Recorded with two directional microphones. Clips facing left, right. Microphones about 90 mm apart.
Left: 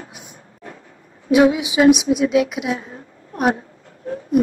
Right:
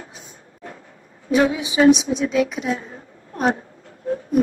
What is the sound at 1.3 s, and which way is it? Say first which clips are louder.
A woman's voice: left 4 dB; 5° left (ahead or behind).